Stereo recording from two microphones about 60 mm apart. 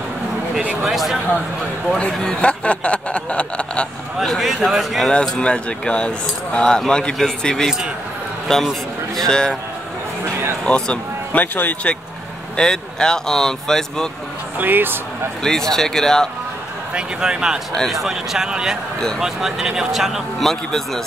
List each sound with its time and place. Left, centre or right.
0.8 s a man's voice: centre
2.0 s speech: centre
4.2 s a man's voice: centre
5.1 s speech: centre
10.6 s speech: centre
11.3 s speech: left
12.5 s speech: centre
14.6 s speech: right
15.4 s speech: centre
16.9 s a man's voice: centre